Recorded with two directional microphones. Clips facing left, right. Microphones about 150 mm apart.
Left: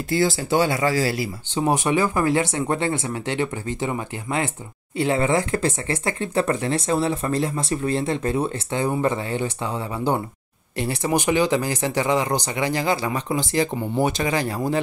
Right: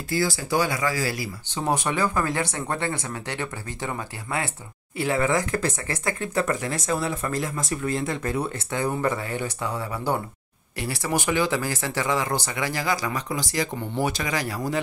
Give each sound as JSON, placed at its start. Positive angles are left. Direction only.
{"t": 0.1, "sound": "speech", "side_deg": 25}